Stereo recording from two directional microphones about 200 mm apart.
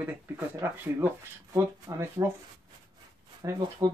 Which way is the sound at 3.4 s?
20° right (ahead or behind).